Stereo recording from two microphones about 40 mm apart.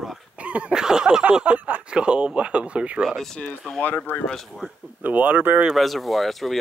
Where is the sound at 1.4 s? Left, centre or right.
Right.